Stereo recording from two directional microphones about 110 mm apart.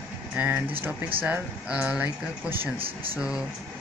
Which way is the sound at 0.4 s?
15° right (ahead or behind).